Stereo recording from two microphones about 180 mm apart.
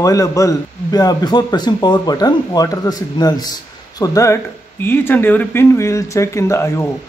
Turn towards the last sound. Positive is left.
turn(degrees=15)  # may be behind; listen again after turning